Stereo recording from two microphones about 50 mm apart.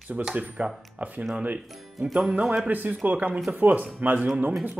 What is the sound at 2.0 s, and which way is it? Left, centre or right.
Speech, centre.